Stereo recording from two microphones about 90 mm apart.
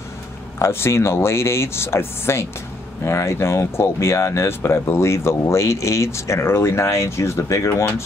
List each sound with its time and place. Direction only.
0.6 s speech: 30° left (ahead or behind)